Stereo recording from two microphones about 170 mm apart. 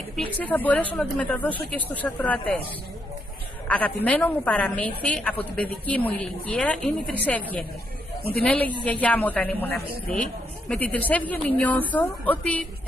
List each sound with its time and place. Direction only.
0.1 s a woman's voice: 10° left (ahead or behind)
3.6 s a woman's voice: 10° left (ahead or behind)
8.5 s a woman's voice: 10° left (ahead or behind)
9.7 s speech: 70° right (ahead or behind)
10.7 s a woman's voice: 10° left (ahead or behind)